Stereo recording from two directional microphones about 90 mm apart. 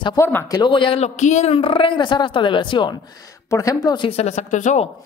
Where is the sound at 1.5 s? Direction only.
80° left; by 2.9 s 65° left (ahead or behind).